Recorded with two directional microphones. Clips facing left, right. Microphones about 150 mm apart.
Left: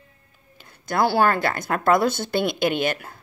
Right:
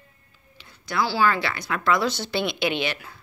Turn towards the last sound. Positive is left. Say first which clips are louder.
# left 4 dB
turn(degrees=50)  # may be behind; listen again after turning